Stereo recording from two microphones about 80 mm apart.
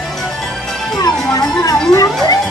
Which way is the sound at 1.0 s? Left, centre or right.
Left.